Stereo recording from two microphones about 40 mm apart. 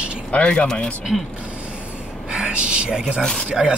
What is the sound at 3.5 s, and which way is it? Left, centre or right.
Speech, right.